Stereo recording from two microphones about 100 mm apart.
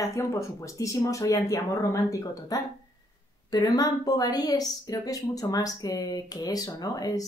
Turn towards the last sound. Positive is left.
turn(degrees=40)  # may be behind; listen again after turning